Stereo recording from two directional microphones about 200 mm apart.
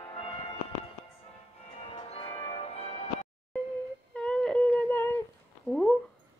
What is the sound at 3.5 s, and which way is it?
Music, 5° left (ahead or behind).